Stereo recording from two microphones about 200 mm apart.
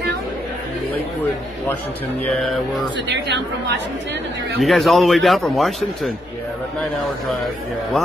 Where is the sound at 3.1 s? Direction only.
60° right (ahead or behind).